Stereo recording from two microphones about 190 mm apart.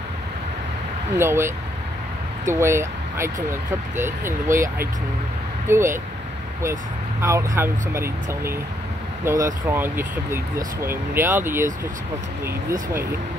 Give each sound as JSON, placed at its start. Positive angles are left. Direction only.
{"t": 1.1, "sound": "speech", "side_deg": -15}
{"t": 2.5, "sound": "speech", "side_deg": -15}